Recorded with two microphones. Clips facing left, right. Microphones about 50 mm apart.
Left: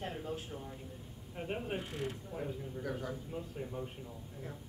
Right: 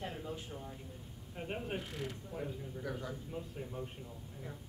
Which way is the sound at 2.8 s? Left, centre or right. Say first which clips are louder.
Left 2 dB; left.